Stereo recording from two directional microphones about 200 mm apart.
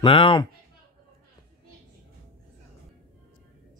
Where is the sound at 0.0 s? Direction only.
25° left (ahead or behind).